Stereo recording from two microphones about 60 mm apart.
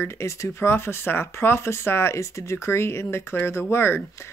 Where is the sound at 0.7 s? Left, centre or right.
Left.